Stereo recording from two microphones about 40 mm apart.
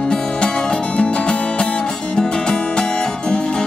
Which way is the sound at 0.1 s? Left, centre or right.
Centre.